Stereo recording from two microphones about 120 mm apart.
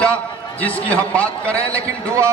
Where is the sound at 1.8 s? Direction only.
25° right (ahead or behind).